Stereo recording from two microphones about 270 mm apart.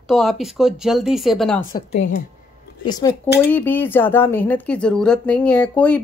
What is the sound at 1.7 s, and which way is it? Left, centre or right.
Speech, left.